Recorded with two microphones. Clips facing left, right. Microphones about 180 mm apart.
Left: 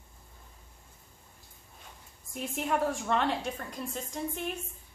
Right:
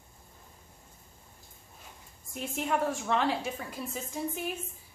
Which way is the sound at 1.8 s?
Centre (ahead or behind).